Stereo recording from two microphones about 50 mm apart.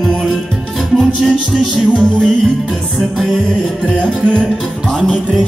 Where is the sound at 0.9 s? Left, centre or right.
Centre.